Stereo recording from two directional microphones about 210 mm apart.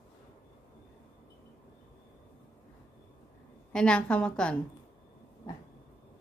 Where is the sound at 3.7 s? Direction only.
5° left (ahead or behind).